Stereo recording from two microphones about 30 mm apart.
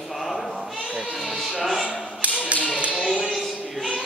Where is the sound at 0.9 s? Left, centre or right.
Centre.